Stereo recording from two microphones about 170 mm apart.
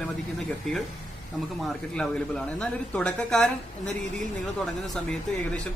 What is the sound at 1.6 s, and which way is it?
A man's voice, centre (ahead or behind).